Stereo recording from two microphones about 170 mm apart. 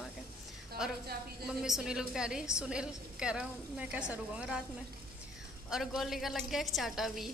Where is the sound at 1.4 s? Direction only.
5° right (ahead or behind).